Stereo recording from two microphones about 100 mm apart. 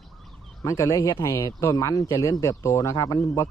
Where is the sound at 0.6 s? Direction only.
35° left (ahead or behind).